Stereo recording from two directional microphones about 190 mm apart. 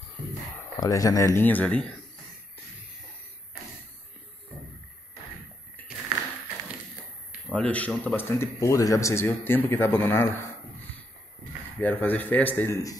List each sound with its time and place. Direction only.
0.7 s speech: 20° left (ahead or behind)
7.4 s speech: 5° left (ahead or behind)
11.8 s speech: 10° left (ahead or behind)